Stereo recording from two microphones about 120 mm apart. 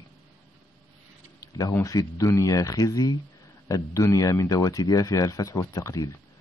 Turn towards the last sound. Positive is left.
turn(degrees=30)  # may be behind; listen again after turning